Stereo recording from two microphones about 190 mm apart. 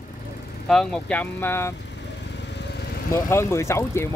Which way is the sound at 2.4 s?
65° left (ahead or behind).